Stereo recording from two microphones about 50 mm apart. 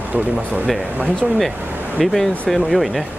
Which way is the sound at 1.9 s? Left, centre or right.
Centre.